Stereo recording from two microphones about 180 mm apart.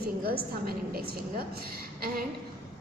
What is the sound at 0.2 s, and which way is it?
Speech, 55° right (ahead or behind).